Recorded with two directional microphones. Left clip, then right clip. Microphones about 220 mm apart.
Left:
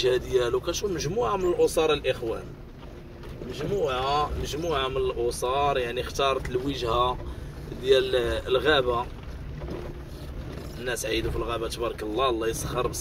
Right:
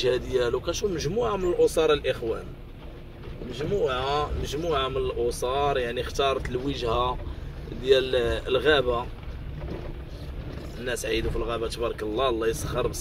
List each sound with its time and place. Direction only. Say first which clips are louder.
0.0 s speech: left 1 dB; 10° right (ahead or behind)
1.0 s speech: left 2 dB; 25° right (ahead or behind)
3.8 s speech: left 2 dB; 20° right (ahead or behind)
10.9 s speech: even; 15° right (ahead or behind)